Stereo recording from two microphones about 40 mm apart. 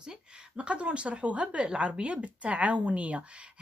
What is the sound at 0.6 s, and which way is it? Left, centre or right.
A woman's voice, right.